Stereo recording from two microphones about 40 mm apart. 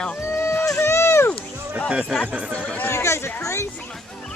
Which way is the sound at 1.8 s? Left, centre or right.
Right.